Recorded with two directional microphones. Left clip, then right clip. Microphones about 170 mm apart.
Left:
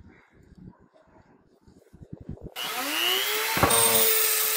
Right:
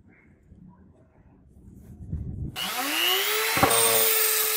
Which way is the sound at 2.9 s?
45° right (ahead or behind).